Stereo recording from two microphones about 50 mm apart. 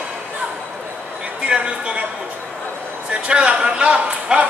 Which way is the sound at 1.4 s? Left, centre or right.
Right.